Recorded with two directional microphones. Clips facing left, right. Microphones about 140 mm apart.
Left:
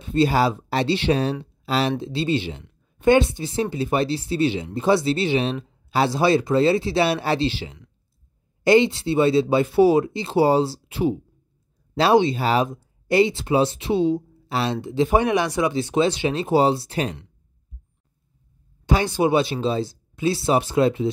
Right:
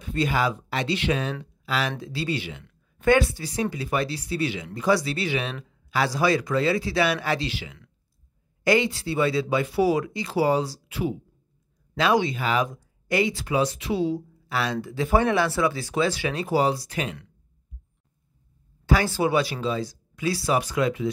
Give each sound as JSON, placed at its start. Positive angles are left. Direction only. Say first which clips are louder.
{"t": 0.0, "sound": "a woman's voice", "louder": "left 5 dB", "side_deg": 30}
{"t": 18.9, "sound": "speech", "louder": "left 3 dB", "side_deg": 20}